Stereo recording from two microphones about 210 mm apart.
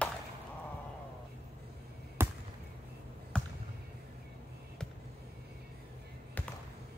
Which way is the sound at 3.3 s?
5° left (ahead or behind).